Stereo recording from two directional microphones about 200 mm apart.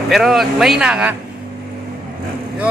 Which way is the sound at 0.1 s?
Centre (ahead or behind).